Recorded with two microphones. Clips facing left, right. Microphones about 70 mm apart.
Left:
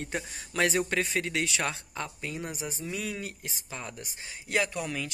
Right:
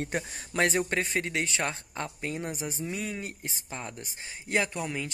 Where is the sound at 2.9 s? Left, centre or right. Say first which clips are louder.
Even; right.